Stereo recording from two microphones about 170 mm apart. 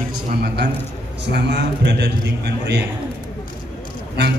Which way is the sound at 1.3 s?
90° right.